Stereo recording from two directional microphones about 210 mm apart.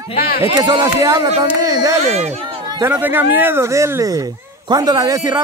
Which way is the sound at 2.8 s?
10° right (ahead or behind).